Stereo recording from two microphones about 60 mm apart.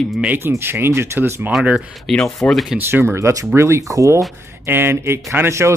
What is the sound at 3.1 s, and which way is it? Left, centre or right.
Speech, right.